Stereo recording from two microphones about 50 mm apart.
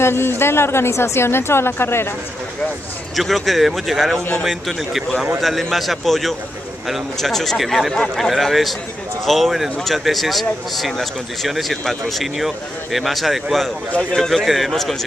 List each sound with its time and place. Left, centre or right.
0.0 s speech: left
3.2 s speech: centre